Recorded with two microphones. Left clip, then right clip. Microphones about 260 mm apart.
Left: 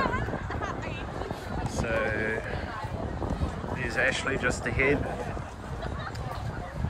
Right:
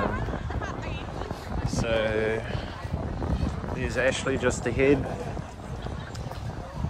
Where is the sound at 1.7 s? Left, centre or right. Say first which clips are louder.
Right 3 dB; centre.